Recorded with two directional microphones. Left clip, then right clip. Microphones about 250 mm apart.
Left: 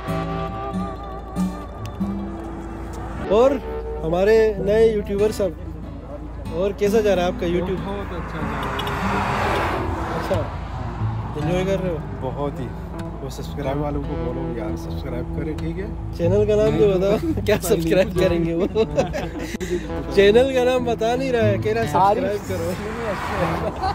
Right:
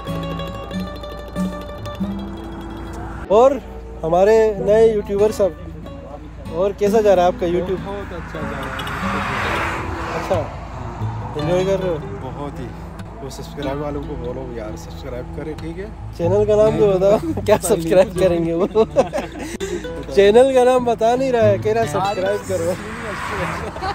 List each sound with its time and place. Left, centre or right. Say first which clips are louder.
0.1 s music: left 1 dB; centre
3.3 s speech: right 4 dB; centre
6.5 s speech: right 3 dB; centre
7.8 s speech: right 1 dB; left
11.4 s speech: right 4 dB; centre
15.1 s speech: even; centre
16.2 s speech: right 3 dB; centre
21.9 s speech: left 2 dB; left